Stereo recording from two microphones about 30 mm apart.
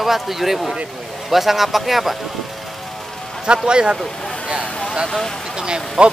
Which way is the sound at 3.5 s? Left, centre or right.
Right.